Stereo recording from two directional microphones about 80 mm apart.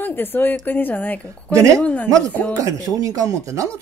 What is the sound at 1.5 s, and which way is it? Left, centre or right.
Speech, right.